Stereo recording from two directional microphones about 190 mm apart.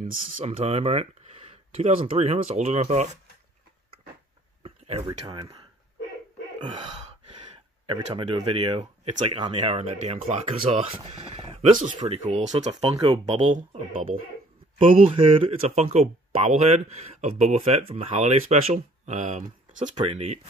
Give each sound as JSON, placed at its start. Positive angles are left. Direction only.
{"t": 0.0, "sound": "speech", "side_deg": -30}
{"t": 4.6, "sound": "a sound", "side_deg": -30}
{"t": 5.0, "sound": "speech", "side_deg": -25}
{"t": 6.6, "sound": "gasp", "side_deg": -25}
{"t": 7.8, "sound": "speech", "side_deg": -25}
{"t": 12.9, "sound": "speech", "side_deg": -20}
{"t": 14.8, "sound": "speech", "side_deg": -30}